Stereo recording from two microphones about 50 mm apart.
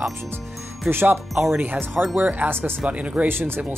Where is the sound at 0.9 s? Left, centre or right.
Right.